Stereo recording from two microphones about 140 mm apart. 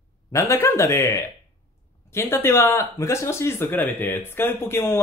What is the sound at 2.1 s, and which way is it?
Speech, 15° left (ahead or behind).